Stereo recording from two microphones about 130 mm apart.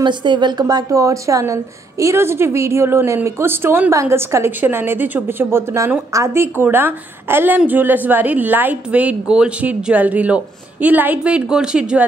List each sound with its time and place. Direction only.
0.0 s a woman's voice: 35° right (ahead or behind); by 12.1 s 5° right (ahead or behind)